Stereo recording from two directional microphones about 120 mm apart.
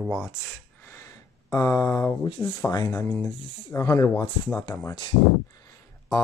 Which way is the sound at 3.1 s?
15° left (ahead or behind).